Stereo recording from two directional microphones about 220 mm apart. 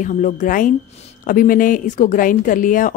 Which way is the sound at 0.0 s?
35° left (ahead or behind).